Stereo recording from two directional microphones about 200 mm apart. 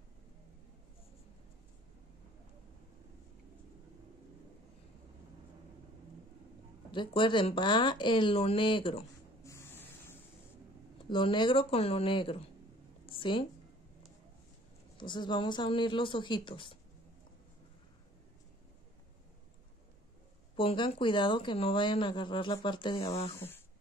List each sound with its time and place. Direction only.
6.9 s speech: 25° left (ahead or behind)
9.4 s spray: 15° left (ahead or behind)
11.1 s speech: 25° left (ahead or behind)
13.0 s a sound: 25° left (ahead or behind)
15.0 s speech: 25° left (ahead or behind)
20.5 s speech: 25° left (ahead or behind)
23.3 s speech: 10° left (ahead or behind)